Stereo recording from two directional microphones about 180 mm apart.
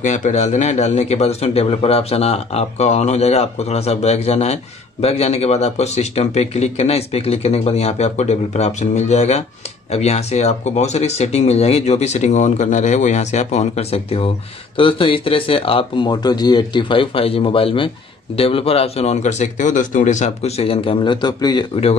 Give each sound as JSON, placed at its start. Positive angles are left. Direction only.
{"t": 0.0, "sound": "speech", "side_deg": 40}